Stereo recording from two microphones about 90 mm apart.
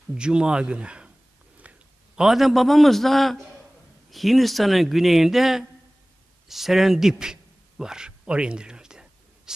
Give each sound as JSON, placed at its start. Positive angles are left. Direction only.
{"t": 0.1, "sound": "speech", "side_deg": -10}
{"t": 1.6, "sound": "a sound", "side_deg": -15}
{"t": 2.2, "sound": "speech", "side_deg": 0}